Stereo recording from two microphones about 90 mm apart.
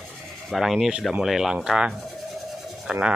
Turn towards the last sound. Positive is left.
turn(degrees=-10)  # may be behind; listen again after turning